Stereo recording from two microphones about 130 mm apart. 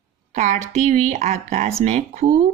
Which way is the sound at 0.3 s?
70° right (ahead or behind).